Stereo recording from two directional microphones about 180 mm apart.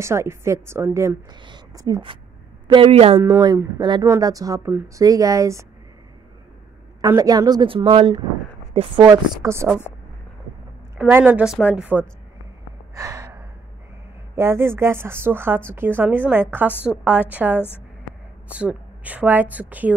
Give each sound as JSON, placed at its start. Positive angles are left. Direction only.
{"t": 0.0, "sound": "speech", "side_deg": -15}
{"t": 3.2, "sound": "speech", "side_deg": -10}
{"t": 7.0, "sound": "speech", "side_deg": -20}
{"t": 11.0, "sound": "speech", "side_deg": -10}
{"t": 12.9, "sound": "gasp", "side_deg": -15}
{"t": 14.3, "sound": "a woman's voice", "side_deg": -15}